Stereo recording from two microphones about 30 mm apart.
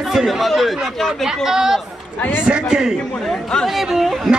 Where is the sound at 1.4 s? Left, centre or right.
Centre.